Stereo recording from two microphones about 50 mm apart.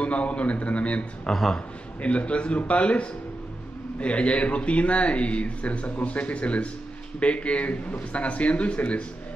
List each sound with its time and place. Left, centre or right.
0.0 s speech: left
1.2 s speech: centre
2.0 s speech: left